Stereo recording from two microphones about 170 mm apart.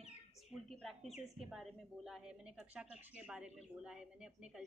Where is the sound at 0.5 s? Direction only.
Centre (ahead or behind).